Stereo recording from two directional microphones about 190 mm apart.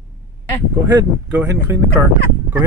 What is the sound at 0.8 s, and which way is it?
Speech, 15° right (ahead or behind).